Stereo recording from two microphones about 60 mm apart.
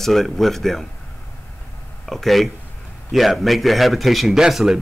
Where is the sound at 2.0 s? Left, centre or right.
Centre.